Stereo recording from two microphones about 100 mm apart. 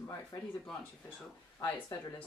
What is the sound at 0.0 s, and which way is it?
Speech, 35° left (ahead or behind).